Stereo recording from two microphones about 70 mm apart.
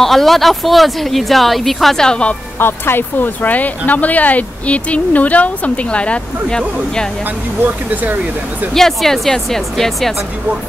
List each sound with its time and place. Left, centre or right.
0.0 s a woman's voice: centre
2.6 s speech: left; by 6.6 s centre
7.6 s speech: right
8.7 s a woman's voice: centre